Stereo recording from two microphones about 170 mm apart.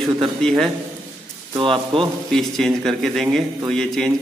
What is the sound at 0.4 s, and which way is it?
Speech, centre (ahead or behind).